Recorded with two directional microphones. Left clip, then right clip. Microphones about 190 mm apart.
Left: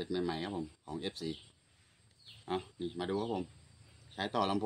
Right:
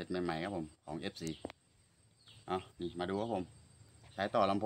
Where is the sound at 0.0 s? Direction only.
35° right (ahead or behind).